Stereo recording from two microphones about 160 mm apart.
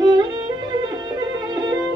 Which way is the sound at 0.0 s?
25° right (ahead or behind).